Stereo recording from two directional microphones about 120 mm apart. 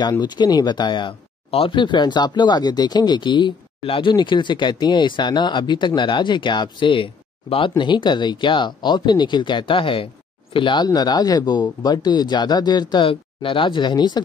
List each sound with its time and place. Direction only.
0.1 s speech: 35° left (ahead or behind)